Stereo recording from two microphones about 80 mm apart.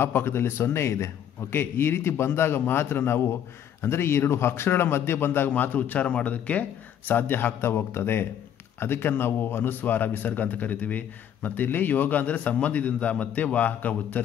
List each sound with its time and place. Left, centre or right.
0.0 s a man's voice: left